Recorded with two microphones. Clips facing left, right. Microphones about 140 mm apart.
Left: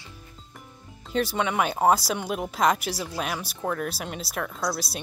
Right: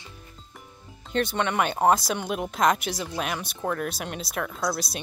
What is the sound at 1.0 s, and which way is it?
Speech, 5° left (ahead or behind).